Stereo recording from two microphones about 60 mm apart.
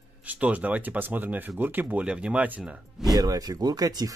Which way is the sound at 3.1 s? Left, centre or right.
Right.